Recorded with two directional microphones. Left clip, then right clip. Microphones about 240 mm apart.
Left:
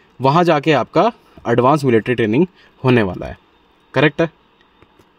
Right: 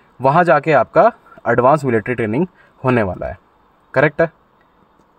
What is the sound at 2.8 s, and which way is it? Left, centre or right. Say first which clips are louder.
Speech: left 1 dB; left.